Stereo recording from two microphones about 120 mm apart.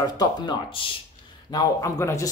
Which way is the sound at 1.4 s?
35° left (ahead or behind).